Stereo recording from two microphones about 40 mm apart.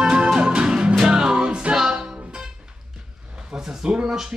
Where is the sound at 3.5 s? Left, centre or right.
Centre.